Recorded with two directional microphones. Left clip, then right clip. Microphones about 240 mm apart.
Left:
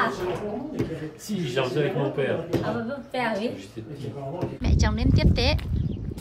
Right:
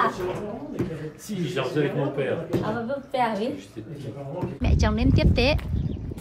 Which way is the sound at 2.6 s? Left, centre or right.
Right.